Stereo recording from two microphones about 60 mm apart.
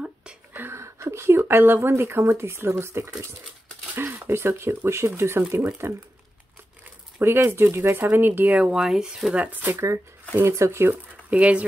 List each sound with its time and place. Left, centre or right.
0.0 s whispering: centre
0.6 s a sound: right
1.5 s speech: right
7.2 s speech: right
8.7 s speech: centre
9.3 s speech: right
10.3 s speech: right
11.2 s speech: right